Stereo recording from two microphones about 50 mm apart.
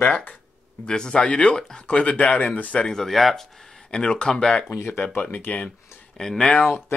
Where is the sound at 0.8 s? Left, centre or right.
Centre; by 2.8 s left.